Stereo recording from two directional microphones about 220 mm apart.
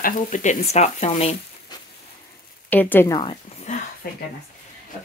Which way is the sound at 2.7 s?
10° left (ahead or behind).